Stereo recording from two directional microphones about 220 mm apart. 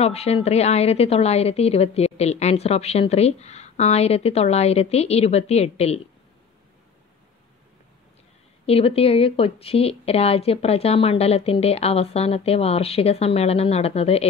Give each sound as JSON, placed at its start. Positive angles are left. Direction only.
{"t": 0.0, "sound": "a woman's voice", "side_deg": 30}
{"t": 8.6, "sound": "a woman's voice", "side_deg": 25}